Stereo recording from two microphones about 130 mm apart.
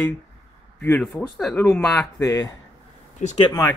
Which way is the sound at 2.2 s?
30° left (ahead or behind).